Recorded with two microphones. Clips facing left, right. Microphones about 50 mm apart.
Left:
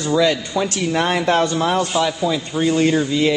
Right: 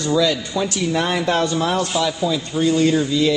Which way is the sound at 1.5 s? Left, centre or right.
Centre.